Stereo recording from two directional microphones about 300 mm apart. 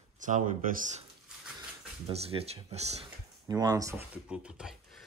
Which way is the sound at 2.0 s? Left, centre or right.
Centre.